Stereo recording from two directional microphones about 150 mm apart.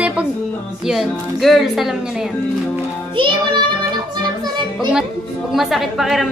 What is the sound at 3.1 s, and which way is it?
Music, 35° right (ahead or behind).